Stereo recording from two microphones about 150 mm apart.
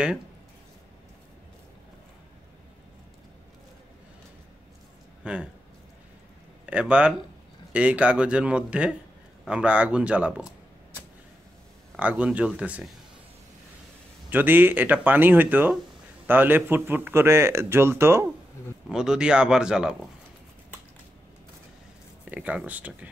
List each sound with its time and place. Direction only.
5.2 s speech: 5° right (ahead or behind)
6.6 s speech: 10° right (ahead or behind)
12.0 s speech: 10° right (ahead or behind)
14.3 s speech: 15° right (ahead or behind)
18.9 s speech: 5° right (ahead or behind)
22.3 s speech: 10° right (ahead or behind)